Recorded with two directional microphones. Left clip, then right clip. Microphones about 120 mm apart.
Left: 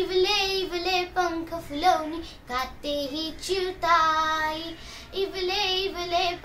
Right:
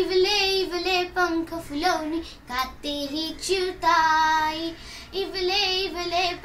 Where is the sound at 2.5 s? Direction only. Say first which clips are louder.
Even; 30° left (ahead or behind).